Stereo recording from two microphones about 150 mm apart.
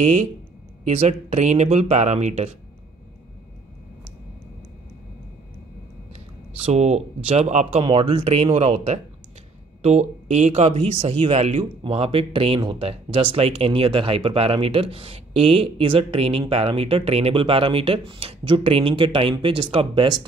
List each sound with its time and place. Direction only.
0.0 s speech: 55° right (ahead or behind)
6.1 s speech: 45° right (ahead or behind)